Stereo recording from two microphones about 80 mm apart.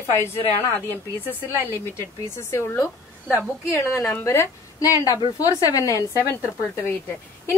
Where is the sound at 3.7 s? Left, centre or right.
Left.